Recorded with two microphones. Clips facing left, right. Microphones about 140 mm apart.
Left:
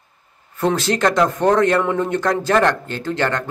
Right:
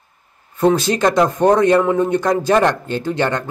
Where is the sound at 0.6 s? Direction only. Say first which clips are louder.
Right 3 dB; 15° right (ahead or behind).